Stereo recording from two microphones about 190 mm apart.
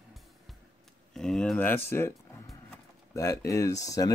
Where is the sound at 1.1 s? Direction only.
5° left (ahead or behind).